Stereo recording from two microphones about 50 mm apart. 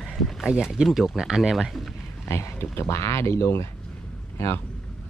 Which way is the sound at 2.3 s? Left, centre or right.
Left.